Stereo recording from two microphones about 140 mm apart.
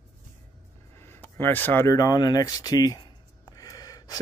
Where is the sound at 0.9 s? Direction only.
15° left (ahead or behind).